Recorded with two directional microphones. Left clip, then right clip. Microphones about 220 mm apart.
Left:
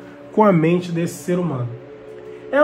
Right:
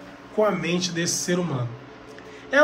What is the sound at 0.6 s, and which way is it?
Speech, 5° left (ahead or behind).